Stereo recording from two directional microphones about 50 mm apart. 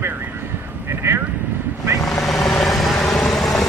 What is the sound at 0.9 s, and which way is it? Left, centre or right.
Vehicle, right.